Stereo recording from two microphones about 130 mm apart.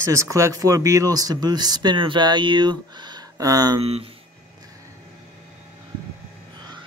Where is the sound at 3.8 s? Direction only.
50° right (ahead or behind).